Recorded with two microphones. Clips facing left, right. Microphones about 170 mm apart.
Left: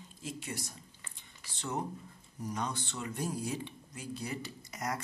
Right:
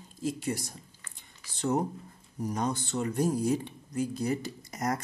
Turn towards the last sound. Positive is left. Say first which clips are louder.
# right 6 dB
turn(degrees=-45)  # may be behind; listen again after turning